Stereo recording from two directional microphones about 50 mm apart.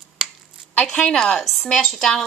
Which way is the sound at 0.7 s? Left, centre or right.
Centre.